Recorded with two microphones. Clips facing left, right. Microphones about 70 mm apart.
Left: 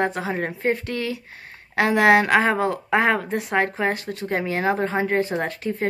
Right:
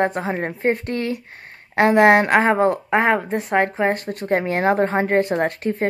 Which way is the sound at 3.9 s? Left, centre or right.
Right.